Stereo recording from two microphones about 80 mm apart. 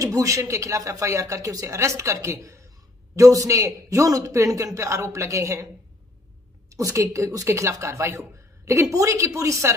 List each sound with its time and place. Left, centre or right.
0.0 s speech: right
6.7 s speech: right